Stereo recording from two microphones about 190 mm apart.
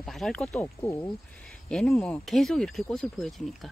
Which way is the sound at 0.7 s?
15° left (ahead or behind).